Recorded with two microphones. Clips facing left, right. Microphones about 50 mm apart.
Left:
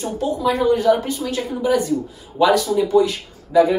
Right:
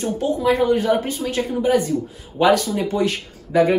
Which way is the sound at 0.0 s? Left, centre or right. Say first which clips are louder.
Right 1 dB; right.